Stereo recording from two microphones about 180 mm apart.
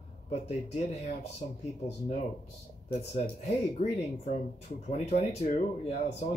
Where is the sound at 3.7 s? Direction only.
40° left (ahead or behind).